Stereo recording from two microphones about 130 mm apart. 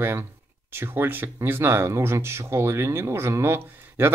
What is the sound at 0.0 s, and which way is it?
Speech, 15° right (ahead or behind).